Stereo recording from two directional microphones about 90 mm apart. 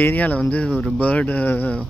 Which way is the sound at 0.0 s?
15° left (ahead or behind).